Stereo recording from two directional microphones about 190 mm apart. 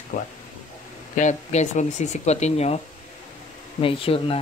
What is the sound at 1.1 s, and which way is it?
Speech, 40° left (ahead or behind).